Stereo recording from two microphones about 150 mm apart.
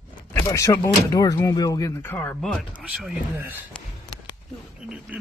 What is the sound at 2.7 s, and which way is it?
Speech, 10° right (ahead or behind).